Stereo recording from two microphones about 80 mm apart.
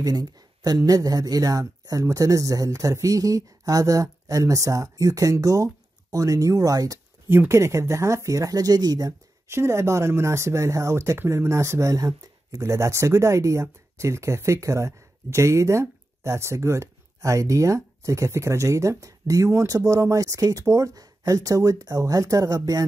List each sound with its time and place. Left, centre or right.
0.0 s speech: right
7.2 s speech: right
9.5 s speech: right